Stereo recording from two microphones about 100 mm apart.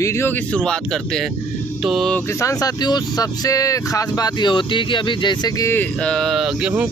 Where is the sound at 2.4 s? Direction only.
40° left (ahead or behind).